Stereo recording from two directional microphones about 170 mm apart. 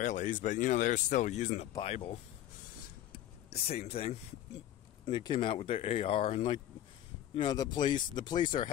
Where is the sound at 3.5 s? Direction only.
35° left (ahead or behind).